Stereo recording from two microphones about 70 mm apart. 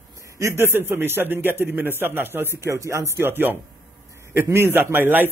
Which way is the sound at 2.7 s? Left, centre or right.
Right.